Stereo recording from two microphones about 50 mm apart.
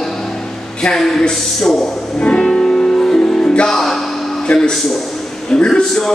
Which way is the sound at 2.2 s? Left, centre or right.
Centre.